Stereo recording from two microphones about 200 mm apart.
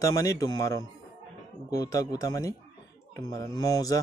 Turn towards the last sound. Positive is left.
turn(degrees=15)  # may be behind; listen again after turning